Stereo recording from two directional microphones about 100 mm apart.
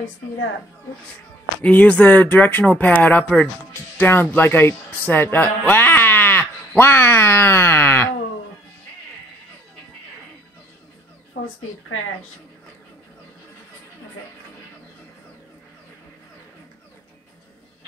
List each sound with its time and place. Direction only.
1.6 s speech: 15° left (ahead or behind)